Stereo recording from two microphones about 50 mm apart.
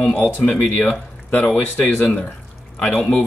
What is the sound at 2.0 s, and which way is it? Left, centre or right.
Speech, left.